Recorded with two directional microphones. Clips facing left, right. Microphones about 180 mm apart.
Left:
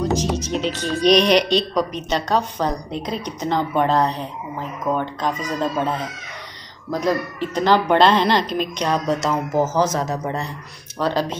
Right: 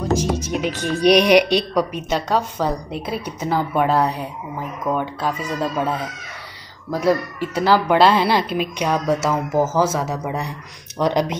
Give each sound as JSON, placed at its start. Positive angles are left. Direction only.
{"t": 0.2, "sound": "speech", "side_deg": -10}